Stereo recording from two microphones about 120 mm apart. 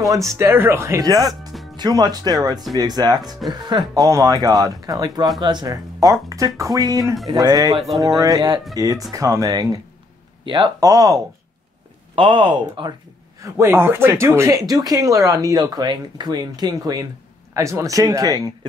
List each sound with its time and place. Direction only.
0.4 s speech: 20° right (ahead or behind)
7.7 s speech: centre (ahead or behind)
8.2 s speech: 30° right (ahead or behind)
10.4 s speech: 40° right (ahead or behind)
10.8 s speech: 30° right (ahead or behind)
12.2 s speech: 45° right (ahead or behind)
13.4 s speech: 20° right (ahead or behind)